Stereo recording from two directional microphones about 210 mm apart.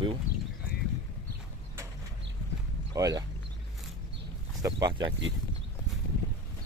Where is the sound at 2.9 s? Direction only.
15° right (ahead or behind).